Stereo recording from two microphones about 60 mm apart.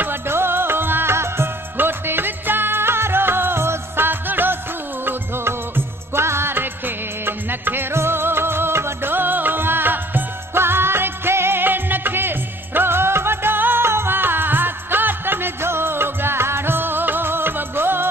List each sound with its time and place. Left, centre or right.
0.0 s music: right